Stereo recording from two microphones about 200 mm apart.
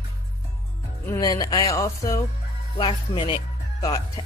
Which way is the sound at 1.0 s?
20° left (ahead or behind).